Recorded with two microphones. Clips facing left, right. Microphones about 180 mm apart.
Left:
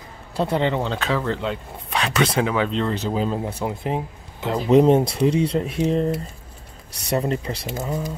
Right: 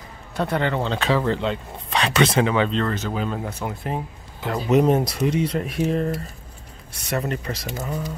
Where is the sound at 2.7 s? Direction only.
15° left (ahead or behind).